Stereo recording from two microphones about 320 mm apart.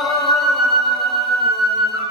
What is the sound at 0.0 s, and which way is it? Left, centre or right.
Music, centre.